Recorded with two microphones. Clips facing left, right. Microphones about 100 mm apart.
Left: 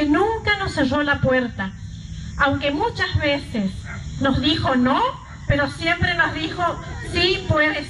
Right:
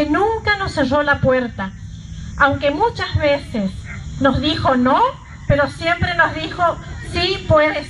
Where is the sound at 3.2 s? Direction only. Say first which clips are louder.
Right 6 dB; 30° right (ahead or behind).